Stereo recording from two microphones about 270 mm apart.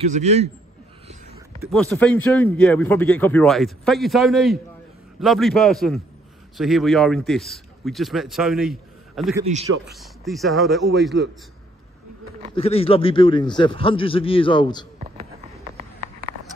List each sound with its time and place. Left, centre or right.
0.1 s a man's voice: right
1.7 s a man's voice: centre
11.1 s a man's voice: right
12.5 s a man's voice: left